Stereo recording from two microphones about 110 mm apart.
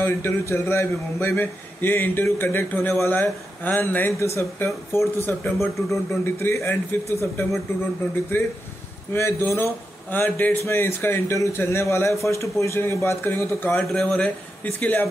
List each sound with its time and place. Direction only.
0.0 s a man's voice: 20° left (ahead or behind)
13.8 s speech: 5° left (ahead or behind)